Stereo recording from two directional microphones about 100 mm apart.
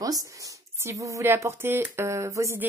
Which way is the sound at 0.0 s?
35° right (ahead or behind).